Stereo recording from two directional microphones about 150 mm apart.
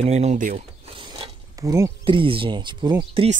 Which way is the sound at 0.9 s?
35° right (ahead or behind).